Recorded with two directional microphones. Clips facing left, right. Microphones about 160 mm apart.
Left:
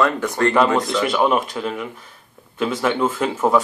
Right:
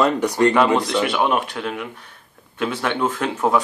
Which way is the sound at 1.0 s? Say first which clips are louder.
Left 1 dB; 5° right (ahead or behind).